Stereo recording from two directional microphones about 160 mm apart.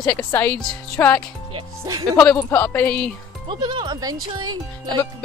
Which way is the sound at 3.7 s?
30° right (ahead or behind).